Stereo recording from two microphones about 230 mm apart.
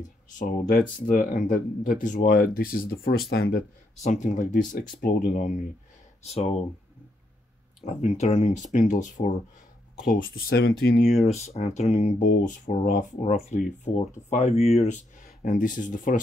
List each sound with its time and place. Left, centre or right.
0.3 s speech: left
4.0 s speech: left
6.2 s speech: left
7.8 s speech: left
11.1 s speech: left